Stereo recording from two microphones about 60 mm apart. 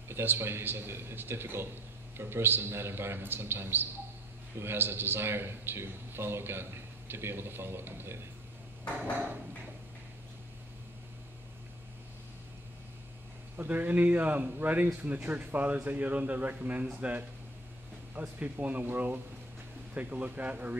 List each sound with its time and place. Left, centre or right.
0.1 s a man's voice: right
13.6 s speech: right